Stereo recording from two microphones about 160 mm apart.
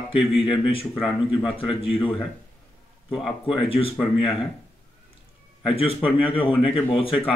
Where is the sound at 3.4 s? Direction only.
35° left (ahead or behind).